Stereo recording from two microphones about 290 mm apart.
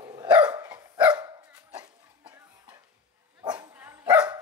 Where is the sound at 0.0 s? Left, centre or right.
Centre.